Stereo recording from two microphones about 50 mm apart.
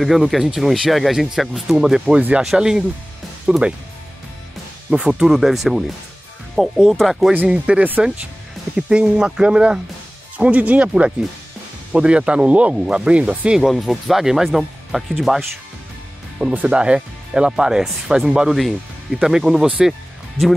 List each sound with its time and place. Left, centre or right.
0.0 s speech: centre
4.9 s speech: centre
5.3 s speech: centre
6.6 s speech: centre
6.9 s speech: centre
7.4 s speech: centre
10.3 s speech: right
10.9 s speech: centre
12.7 s speech: centre
13.6 s speech: centre
16.6 s speech: right
18.5 s speech: centre
19.2 s speech: centre